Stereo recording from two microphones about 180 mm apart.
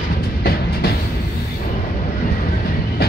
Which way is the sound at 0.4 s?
60° left (ahead or behind).